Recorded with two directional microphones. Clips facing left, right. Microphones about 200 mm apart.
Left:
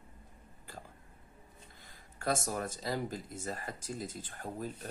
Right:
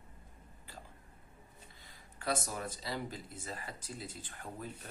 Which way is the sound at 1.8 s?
45° left (ahead or behind).